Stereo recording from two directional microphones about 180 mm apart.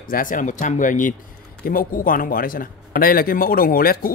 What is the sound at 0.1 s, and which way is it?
A man's voice, 50° left (ahead or behind).